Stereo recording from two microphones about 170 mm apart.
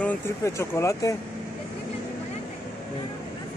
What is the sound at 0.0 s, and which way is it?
Speech, 15° left (ahead or behind).